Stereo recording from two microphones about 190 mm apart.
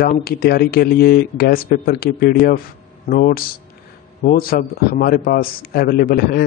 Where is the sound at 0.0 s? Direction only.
50° left (ahead or behind).